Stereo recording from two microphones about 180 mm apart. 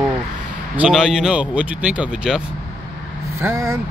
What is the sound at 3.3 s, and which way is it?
Speech, 15° right (ahead or behind).